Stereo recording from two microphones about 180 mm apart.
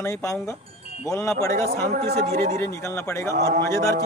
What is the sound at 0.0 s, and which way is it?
Speech, 15° left (ahead or behind).